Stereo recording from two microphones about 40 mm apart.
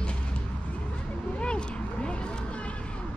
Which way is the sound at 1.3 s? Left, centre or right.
Left.